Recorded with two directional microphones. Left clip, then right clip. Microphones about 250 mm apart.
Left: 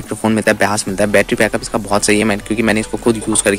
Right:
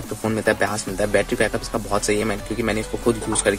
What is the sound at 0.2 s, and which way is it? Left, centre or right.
Speech, left.